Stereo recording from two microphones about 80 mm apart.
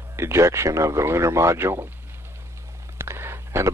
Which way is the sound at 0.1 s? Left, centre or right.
Right.